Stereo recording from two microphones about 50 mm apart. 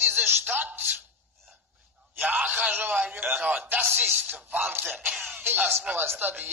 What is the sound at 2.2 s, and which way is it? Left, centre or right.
A man's voice, right.